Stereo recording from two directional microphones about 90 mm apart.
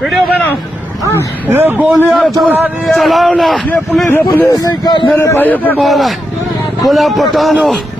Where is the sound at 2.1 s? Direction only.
Centre (ahead or behind).